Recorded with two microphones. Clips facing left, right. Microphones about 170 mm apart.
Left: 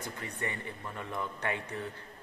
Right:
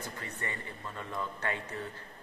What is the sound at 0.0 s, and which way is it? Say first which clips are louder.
Speech: left 2 dB; 15° left (ahead or behind).